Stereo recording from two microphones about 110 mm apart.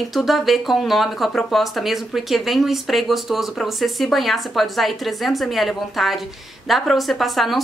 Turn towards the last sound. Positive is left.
turn(degrees=0)  # may be behind; listen again after turning